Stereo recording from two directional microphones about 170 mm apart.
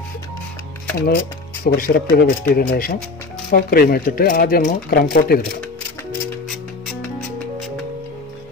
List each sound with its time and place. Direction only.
1.6 s speech: 60° left (ahead or behind)